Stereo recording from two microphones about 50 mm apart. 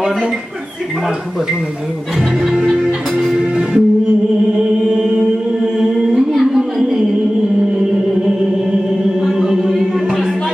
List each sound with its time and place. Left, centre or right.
2.4 s music: centre
6.3 s a sound: centre
9.2 s music: centre